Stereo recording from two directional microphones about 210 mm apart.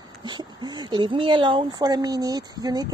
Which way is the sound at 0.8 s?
20° right (ahead or behind).